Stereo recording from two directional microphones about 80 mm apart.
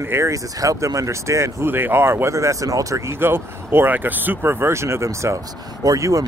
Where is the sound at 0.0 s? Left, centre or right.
Right.